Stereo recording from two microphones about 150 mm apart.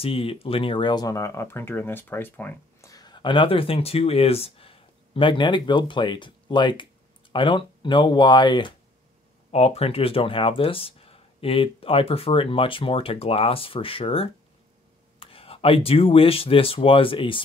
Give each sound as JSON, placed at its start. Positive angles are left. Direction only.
{"t": 0.0, "sound": "speech", "side_deg": 40}
{"t": 2.9, "sound": "speech", "side_deg": 30}
{"t": 9.5, "sound": "speech", "side_deg": 45}